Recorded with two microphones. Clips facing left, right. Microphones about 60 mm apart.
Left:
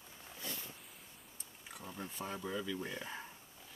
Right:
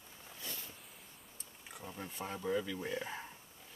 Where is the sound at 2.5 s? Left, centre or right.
Centre.